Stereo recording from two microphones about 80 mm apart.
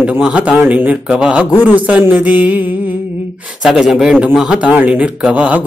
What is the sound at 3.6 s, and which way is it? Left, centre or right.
A man's voice, centre.